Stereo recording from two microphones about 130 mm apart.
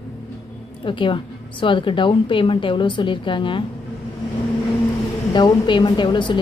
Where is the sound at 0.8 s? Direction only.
40° left (ahead or behind).